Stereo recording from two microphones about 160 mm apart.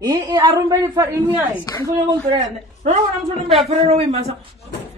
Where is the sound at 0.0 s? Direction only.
30° right (ahead or behind).